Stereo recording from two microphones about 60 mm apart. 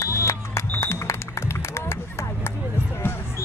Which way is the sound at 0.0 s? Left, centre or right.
Left.